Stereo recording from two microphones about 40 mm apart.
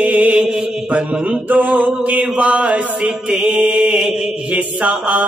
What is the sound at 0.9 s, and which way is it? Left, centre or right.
Mantra, right.